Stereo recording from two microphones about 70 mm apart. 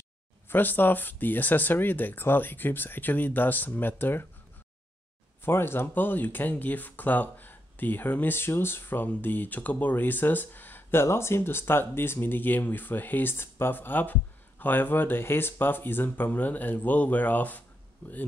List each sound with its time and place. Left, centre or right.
0.5 s speech: left
5.4 s speech: left